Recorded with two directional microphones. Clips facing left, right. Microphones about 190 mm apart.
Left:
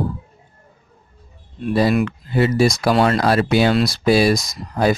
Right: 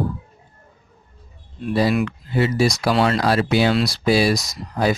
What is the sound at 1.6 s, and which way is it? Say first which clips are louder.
Speech: left 2 dB; 50° left (ahead or behind).